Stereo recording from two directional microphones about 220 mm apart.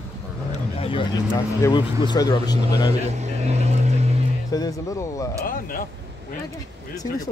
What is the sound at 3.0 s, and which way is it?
Vehicle, 30° right (ahead or behind).